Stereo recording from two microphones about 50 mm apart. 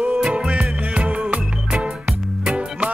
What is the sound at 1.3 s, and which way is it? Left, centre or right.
Music, centre.